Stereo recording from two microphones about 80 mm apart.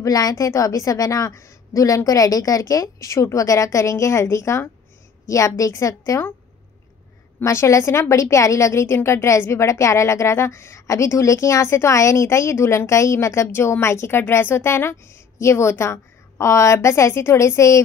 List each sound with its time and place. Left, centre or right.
0.0 s a woman's voice: left
7.4 s a woman's voice: left